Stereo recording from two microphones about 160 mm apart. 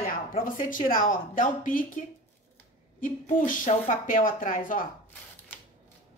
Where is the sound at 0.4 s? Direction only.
55° left (ahead or behind).